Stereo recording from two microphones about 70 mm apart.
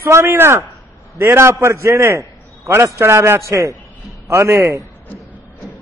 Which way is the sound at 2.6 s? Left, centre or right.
Right.